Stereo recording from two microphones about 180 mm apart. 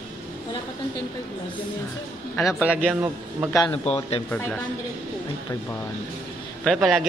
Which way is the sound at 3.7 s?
35° left (ahead or behind).